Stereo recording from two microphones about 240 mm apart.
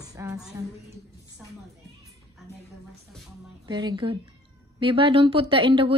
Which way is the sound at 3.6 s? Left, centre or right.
Centre.